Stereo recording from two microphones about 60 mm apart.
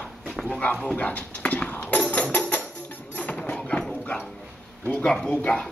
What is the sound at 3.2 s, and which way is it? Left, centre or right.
Clip-clop, left.